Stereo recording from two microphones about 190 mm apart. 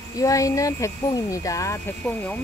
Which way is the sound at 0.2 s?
15° left (ahead or behind).